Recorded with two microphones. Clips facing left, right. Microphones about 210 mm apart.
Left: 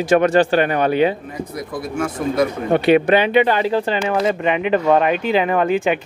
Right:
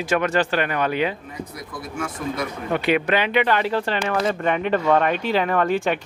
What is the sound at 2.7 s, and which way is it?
Speech, 30° left (ahead or behind).